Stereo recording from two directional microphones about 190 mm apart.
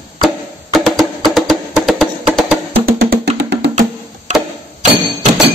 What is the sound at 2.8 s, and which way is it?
Music, 55° right (ahead or behind).